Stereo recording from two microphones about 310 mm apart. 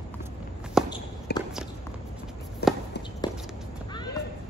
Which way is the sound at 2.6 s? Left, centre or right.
Left.